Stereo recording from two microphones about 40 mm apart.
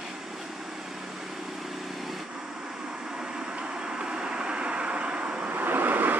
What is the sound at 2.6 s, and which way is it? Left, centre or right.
Vehicle, centre.